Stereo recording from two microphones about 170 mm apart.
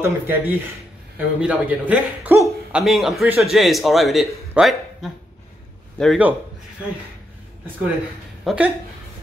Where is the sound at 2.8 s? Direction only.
Centre (ahead or behind).